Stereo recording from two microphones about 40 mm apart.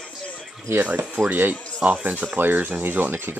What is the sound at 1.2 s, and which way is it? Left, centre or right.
Speech, right.